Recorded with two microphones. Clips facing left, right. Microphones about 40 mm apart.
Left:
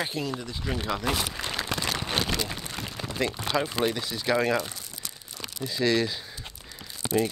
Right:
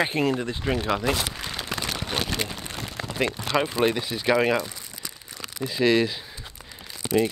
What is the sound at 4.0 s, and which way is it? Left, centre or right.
Speech, right.